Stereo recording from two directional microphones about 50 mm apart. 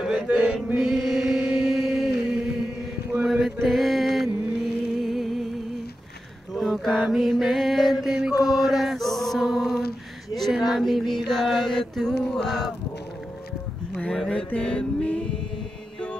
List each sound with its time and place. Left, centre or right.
0.0 s chant: centre
0.7 s mantra: centre
2.1 s music: centre
3.6 s music: centre
6.5 s mantra: centre
8.9 s male singing: centre
9.5 s a sound: centre
14.1 s mantra: centre
14.6 s music: centre